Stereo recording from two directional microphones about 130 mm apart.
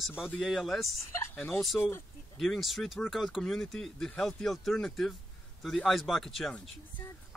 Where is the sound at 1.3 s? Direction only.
15° left (ahead or behind).